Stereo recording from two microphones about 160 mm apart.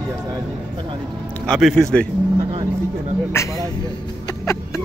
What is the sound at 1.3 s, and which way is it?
Speech, 5° left (ahead or behind).